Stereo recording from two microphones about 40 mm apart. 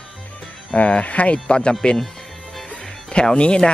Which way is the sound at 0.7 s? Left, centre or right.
Left.